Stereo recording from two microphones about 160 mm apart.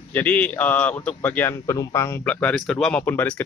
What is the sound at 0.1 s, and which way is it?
A man's voice, 10° left (ahead or behind).